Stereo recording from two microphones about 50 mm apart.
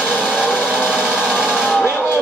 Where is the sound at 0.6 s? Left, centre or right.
Centre.